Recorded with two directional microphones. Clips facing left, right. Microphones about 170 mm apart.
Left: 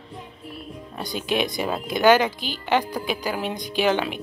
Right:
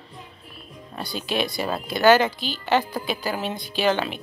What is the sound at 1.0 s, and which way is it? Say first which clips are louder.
Speech: left 2 dB; 15° left (ahead or behind).